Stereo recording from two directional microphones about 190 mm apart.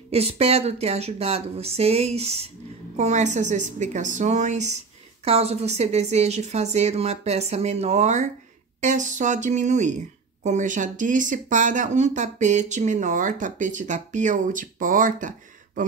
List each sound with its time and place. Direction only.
0.1 s speech: 30° right (ahead or behind)